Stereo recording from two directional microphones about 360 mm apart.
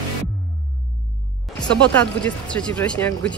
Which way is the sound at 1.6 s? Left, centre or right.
Centre.